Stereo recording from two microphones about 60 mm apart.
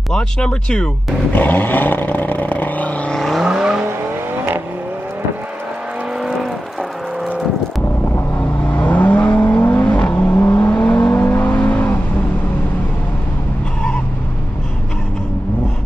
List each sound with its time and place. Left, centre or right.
0.1 s speech: centre
1.3 s vehicle: left
3.1 s vehicle: centre
3.4 s vehicle: centre
8.4 s vehicle: left
10.7 s vehicle: left
11.1 s vehicle: left